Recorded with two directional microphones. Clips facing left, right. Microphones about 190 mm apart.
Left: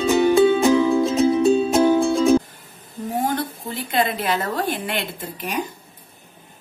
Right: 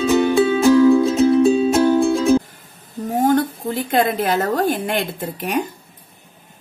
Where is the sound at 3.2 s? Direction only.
45° right (ahead or behind).